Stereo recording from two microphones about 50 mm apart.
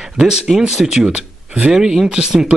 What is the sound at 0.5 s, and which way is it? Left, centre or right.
Speech, centre.